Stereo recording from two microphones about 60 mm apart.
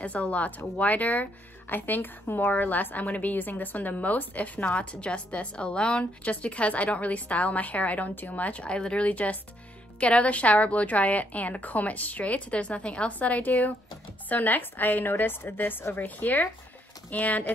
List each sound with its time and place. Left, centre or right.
0.0 s a woman's voice: left